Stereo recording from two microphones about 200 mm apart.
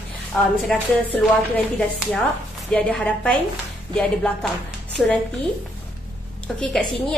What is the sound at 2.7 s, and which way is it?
A woman's voice, 5° left (ahead or behind).